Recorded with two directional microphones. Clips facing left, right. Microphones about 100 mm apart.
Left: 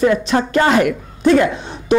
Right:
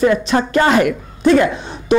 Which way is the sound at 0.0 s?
20° right (ahead or behind).